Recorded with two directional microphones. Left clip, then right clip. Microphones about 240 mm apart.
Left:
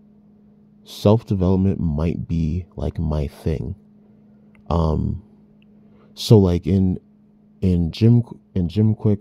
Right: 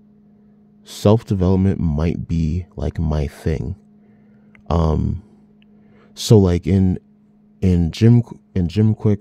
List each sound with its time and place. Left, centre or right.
0.8 s speech: centre